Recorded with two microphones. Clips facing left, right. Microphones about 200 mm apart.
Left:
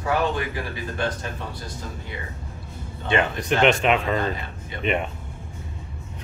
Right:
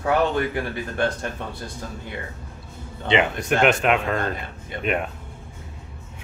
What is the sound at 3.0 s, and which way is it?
Speech, 20° right (ahead or behind).